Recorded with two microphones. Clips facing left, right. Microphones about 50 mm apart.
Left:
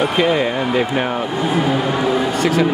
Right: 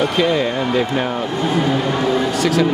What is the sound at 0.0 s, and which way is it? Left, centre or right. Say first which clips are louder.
Speech: left 1 dB; centre.